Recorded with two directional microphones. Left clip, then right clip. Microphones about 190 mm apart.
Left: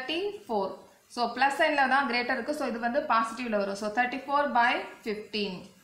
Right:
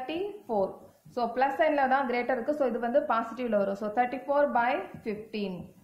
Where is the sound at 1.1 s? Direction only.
50° right (ahead or behind).